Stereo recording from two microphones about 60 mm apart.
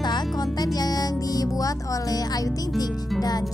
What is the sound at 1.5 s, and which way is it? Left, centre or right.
Speech, left.